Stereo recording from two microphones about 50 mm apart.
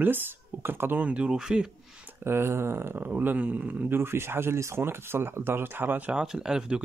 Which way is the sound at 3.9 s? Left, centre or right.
Right.